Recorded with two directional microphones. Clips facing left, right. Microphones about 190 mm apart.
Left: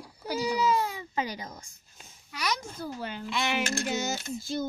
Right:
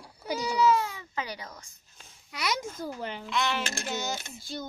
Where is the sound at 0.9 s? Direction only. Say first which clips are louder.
Left 4 dB; 25° left (ahead or behind).